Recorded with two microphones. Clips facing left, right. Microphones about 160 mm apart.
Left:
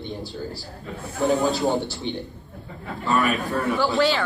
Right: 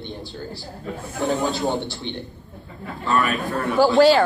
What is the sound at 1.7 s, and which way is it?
Speech, 40° left (ahead or behind).